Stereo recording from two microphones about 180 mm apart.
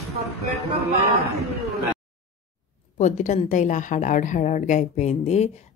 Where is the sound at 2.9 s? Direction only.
40° left (ahead or behind).